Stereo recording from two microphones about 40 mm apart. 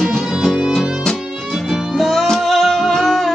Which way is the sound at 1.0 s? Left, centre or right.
Centre.